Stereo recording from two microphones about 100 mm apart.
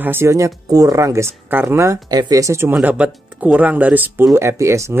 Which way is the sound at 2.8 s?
15° right (ahead or behind).